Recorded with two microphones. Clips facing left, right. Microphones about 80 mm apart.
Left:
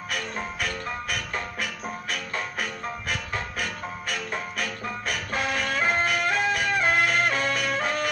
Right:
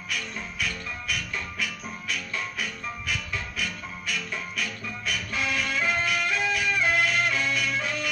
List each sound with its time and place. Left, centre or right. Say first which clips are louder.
0.1 s music: left 3 dB; left